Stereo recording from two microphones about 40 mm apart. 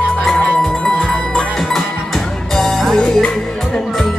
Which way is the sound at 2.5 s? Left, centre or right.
Centre.